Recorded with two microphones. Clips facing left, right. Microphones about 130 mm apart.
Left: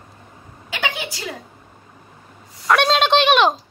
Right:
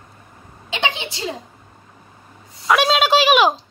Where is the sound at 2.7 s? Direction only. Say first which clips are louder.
Even; 5° right (ahead or behind).